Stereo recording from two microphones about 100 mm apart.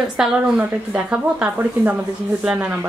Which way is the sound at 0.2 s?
10° right (ahead or behind).